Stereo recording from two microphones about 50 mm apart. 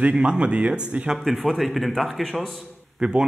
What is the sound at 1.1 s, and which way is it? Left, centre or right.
A man's voice, centre.